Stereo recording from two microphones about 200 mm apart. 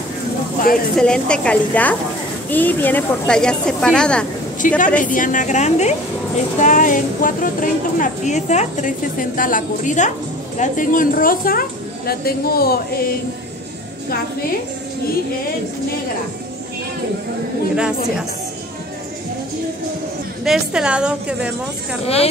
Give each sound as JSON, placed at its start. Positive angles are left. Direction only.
{"t": 0.9, "sound": "speech", "side_deg": 5}
{"t": 4.6, "sound": "a woman's voice", "side_deg": 40}
{"t": 17.7, "sound": "speech", "side_deg": -5}
{"t": 20.4, "sound": "speech", "side_deg": -5}
{"t": 22.0, "sound": "a woman's voice", "side_deg": 30}